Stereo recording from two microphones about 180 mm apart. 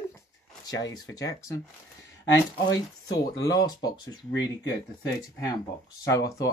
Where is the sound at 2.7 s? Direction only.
20° left (ahead or behind).